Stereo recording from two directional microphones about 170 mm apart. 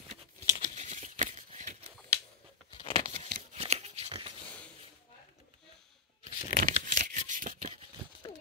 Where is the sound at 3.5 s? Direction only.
40° right (ahead or behind).